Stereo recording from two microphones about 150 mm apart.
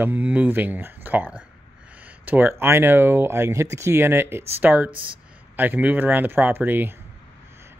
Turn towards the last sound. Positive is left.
turn(degrees=-15)  # may be behind; listen again after turning